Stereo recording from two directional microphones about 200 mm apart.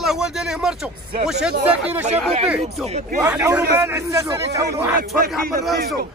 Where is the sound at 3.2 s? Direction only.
10° right (ahead or behind).